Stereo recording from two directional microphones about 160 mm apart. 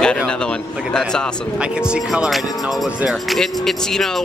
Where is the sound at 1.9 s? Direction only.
5° right (ahead or behind).